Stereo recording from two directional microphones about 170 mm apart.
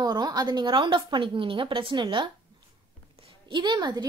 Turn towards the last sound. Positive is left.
turn(degrees=-25)  # may be behind; listen again after turning